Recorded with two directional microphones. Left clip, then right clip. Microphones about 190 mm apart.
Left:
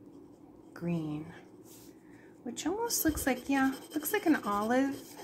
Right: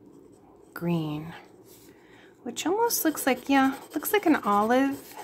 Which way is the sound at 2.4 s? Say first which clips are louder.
Right 9 dB; 20° right (ahead or behind).